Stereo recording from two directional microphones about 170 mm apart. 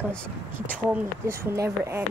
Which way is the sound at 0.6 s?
10° right (ahead or behind).